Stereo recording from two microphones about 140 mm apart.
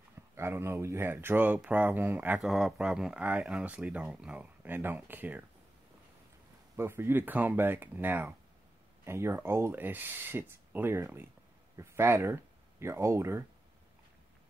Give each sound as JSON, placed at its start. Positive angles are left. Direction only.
{"t": 0.4, "sound": "speech", "side_deg": -20}
{"t": 6.8, "sound": "speech", "side_deg": -15}